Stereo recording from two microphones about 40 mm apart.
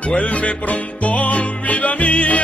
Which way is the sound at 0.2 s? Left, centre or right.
Left.